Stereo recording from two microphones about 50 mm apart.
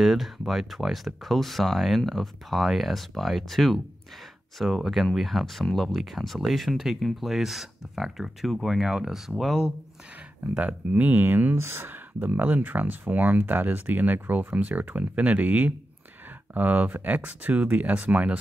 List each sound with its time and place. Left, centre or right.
0.0 s speech: centre
5.9 s speech: centre
10.6 s speech: right
11.5 s speech: right